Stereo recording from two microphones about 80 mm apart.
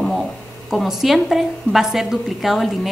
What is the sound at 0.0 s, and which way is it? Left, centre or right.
A woman's voice, centre.